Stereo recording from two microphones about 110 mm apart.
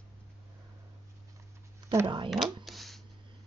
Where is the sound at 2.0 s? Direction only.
50° right (ahead or behind).